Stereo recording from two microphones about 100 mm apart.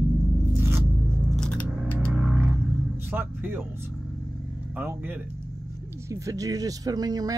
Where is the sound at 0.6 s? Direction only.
25° right (ahead or behind).